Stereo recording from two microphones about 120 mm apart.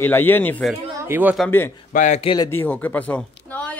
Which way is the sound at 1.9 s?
90° left.